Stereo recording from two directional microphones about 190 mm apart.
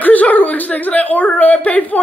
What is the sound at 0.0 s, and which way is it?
Speech, 10° left (ahead or behind).